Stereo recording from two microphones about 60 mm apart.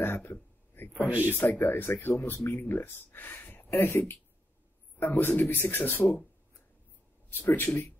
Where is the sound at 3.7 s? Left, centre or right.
Left.